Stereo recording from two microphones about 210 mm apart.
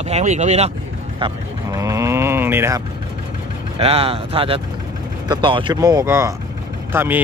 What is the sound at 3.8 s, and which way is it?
Speech, 25° right (ahead or behind).